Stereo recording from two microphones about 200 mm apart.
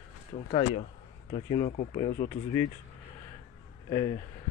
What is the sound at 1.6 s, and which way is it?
Speech, 40° left (ahead or behind).